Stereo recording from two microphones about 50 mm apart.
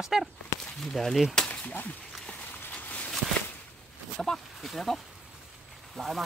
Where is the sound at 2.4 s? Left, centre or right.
Left.